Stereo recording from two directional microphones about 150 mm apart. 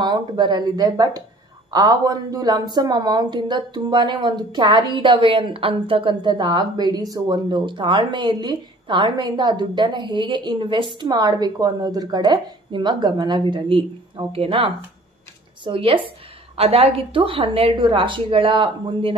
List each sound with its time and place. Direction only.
0.0 s a woman's voice: 30° right (ahead or behind)